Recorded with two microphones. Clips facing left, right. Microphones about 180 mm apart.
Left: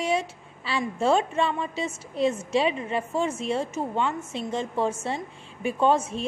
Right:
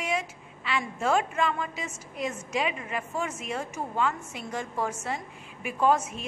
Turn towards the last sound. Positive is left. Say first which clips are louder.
# left 2 dB
turn(degrees=30)  # may be behind; listen again after turning